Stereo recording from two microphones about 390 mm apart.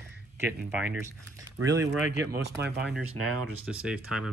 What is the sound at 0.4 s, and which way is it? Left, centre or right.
Speech, centre.